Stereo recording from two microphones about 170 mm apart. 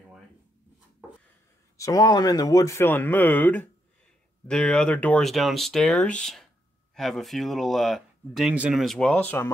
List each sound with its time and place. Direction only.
1.8 s speech: 20° left (ahead or behind)